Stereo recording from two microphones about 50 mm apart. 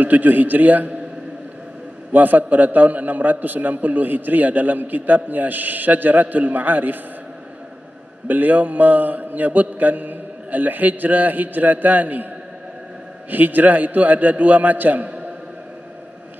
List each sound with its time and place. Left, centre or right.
0.0 s a man's voice: right
2.1 s a man's voice: right
8.3 s a man's voice: right
13.3 s a man's voice: right